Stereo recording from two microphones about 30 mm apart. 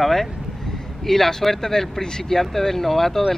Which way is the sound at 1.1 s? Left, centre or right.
Centre.